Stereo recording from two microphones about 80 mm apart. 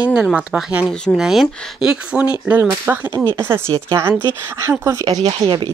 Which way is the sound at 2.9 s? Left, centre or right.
Right.